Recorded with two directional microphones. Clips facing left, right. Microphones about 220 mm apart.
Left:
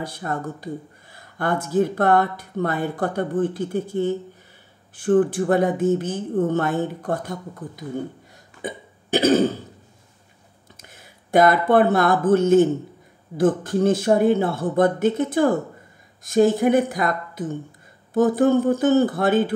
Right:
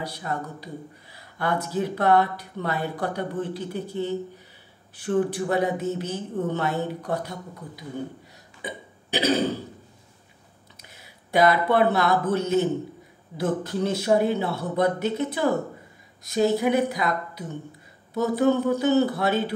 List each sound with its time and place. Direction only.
0.0 s speech: 50° left (ahead or behind)
8.6 s burping: 50° left (ahead or behind)
10.8 s speech: 50° left (ahead or behind)